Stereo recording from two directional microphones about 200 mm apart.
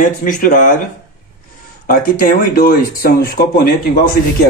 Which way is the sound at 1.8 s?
45° left (ahead or behind).